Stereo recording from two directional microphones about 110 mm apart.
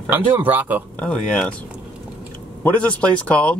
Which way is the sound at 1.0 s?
10° left (ahead or behind).